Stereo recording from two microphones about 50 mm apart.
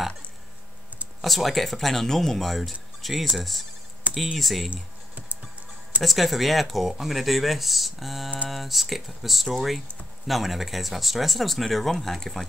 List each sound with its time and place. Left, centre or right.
1.2 s speech: centre
4.1 s a sound: right
4.4 s speech: centre
6.0 s speech: centre